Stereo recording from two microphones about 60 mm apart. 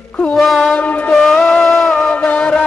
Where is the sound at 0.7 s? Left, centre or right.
Left.